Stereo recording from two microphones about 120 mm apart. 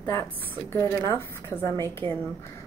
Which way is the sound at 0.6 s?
25° left (ahead or behind).